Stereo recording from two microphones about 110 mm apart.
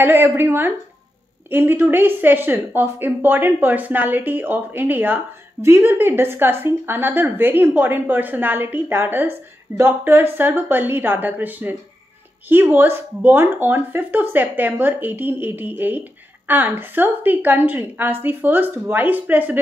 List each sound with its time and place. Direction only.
0.0 s speech: 20° right (ahead or behind)